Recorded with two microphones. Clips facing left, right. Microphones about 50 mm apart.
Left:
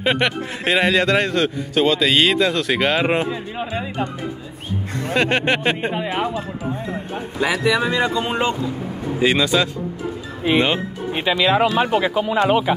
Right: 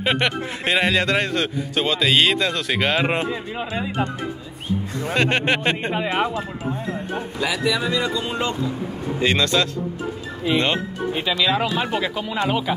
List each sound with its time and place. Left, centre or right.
0.0 s a man's voice: centre
5.1 s a man's voice: centre
7.3 s speech: left
9.2 s speech: centre
11.1 s speech: left